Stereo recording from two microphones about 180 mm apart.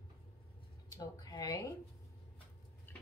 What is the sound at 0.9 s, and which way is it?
Speech, 20° left (ahead or behind).